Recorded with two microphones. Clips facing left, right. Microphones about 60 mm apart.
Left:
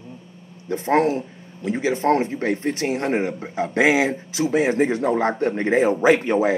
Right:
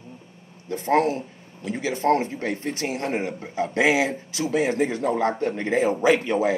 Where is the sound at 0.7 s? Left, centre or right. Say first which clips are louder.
Left 2 dB; left.